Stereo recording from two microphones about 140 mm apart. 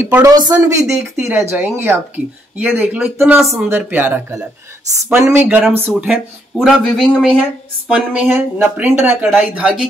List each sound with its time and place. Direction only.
0.0 s speech: 20° right (ahead or behind)
5.9 s speech: centre (ahead or behind)